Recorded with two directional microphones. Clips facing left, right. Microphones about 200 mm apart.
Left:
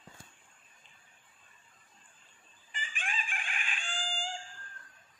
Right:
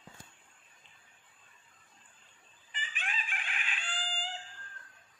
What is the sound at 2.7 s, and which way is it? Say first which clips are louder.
Chicken: left 1 dB; 45° left (ahead or behind).